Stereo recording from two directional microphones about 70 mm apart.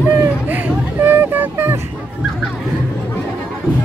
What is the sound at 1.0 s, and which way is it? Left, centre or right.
Music, right.